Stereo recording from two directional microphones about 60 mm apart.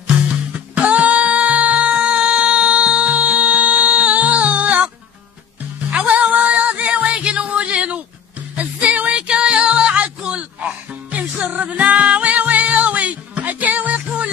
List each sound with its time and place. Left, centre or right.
0.7 s music: right